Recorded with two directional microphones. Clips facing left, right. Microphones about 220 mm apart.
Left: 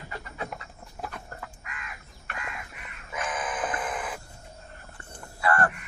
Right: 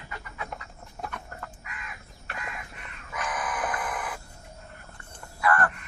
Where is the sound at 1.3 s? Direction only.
35° left (ahead or behind).